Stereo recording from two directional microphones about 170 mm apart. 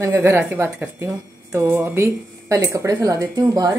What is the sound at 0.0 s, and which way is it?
Speech, 15° right (ahead or behind).